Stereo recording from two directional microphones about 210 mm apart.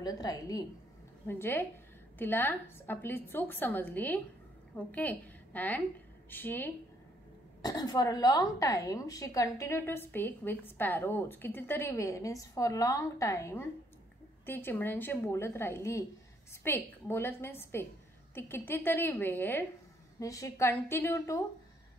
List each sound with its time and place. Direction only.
0.0 s a woman's voice: 15° left (ahead or behind)